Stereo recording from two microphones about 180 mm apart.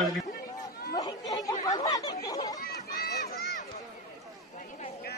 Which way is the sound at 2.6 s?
60° left (ahead or behind).